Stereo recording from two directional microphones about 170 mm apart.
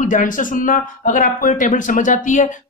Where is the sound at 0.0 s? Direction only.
50° left (ahead or behind).